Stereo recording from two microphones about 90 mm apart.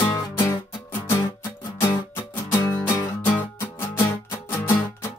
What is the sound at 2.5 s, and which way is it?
Music, 25° left (ahead or behind).